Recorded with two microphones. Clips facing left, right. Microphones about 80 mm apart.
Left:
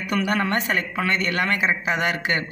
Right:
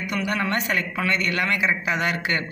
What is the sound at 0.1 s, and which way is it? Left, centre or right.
A man's voice, left.